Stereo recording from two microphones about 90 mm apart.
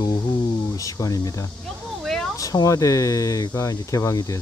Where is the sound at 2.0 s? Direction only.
5° left (ahead or behind).